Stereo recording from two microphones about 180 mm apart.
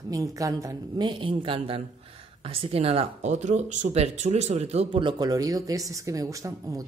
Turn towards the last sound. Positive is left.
turn(degrees=-20)  # may be behind; listen again after turning